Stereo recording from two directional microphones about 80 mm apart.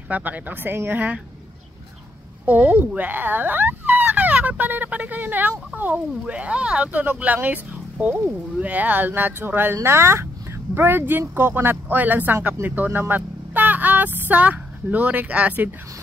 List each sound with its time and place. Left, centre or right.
0.1 s speech: right
2.4 s speech: centre
13.0 s a sound: right